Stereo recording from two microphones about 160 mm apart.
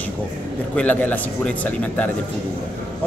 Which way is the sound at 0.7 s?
10° left (ahead or behind).